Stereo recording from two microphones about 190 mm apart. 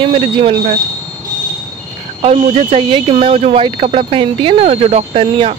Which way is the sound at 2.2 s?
35° right (ahead or behind).